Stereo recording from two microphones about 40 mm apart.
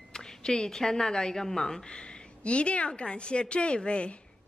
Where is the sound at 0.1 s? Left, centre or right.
Centre.